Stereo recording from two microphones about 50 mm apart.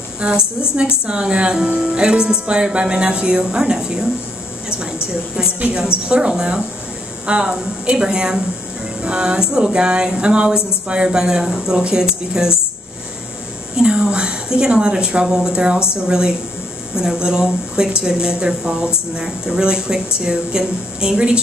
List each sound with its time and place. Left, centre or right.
0.2 s speech: centre
6.0 s speech: centre
13.7 s speech: centre